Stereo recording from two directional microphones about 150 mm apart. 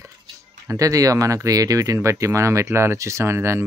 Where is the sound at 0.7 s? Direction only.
20° right (ahead or behind).